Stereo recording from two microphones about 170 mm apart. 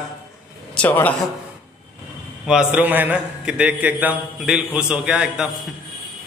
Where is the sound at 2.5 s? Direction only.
5° right (ahead or behind).